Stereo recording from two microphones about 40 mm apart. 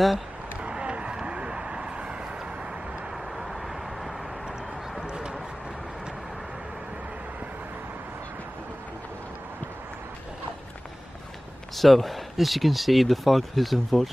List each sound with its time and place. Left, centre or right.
0.6 s vehicle: right
5.0 s clip-clop: right
11.7 s speech: centre